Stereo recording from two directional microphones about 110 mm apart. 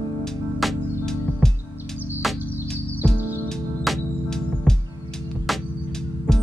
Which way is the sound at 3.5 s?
5° left (ahead or behind).